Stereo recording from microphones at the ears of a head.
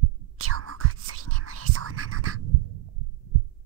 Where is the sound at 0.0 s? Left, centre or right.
Right.